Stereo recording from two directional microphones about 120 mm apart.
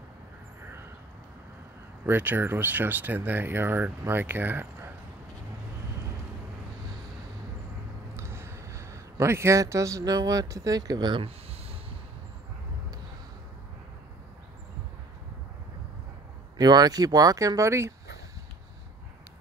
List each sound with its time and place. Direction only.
0.6 s vehicle: 20° right (ahead or behind)
2.0 s speech: 15° right (ahead or behind)
8.2 s a man's voice: 20° right (ahead or behind); by 11.2 s 40° right (ahead or behind)
16.5 s speech: 35° right (ahead or behind)